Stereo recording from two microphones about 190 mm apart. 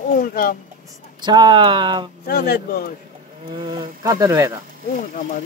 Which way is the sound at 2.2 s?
55° left (ahead or behind).